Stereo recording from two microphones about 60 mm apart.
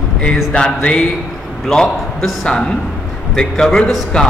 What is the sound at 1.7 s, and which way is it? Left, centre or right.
A man's voice, centre.